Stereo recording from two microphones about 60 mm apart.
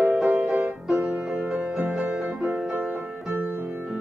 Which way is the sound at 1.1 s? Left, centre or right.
Right.